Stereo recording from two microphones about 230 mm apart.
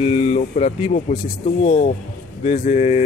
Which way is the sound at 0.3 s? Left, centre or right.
Left.